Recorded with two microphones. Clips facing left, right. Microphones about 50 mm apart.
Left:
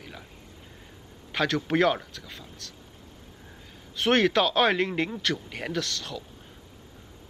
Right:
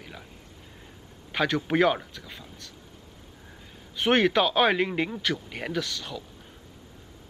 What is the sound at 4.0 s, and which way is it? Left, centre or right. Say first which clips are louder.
Speech: even; centre.